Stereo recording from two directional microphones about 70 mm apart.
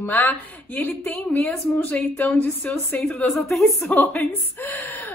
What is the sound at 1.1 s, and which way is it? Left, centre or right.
Speech, centre.